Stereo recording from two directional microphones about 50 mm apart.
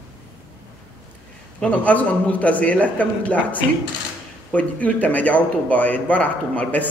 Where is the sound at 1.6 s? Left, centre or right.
Left.